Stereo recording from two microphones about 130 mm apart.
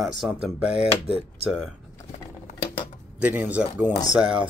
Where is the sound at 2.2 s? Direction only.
20° left (ahead or behind).